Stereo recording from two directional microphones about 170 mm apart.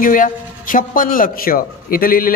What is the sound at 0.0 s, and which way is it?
A man's voice, 50° left (ahead or behind).